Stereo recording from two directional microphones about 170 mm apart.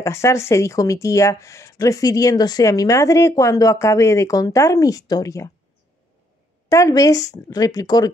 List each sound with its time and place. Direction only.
0.0 s speech: 15° left (ahead or behind)
6.7 s speech: 20° left (ahead or behind)